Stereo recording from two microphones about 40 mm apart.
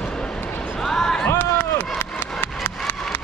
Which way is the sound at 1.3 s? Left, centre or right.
Left.